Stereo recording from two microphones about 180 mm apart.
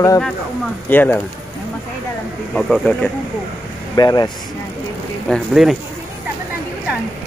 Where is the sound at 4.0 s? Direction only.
20° left (ahead or behind).